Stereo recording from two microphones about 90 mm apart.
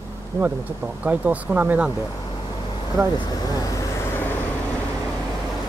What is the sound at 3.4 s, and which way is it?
Speech, 45° left (ahead or behind).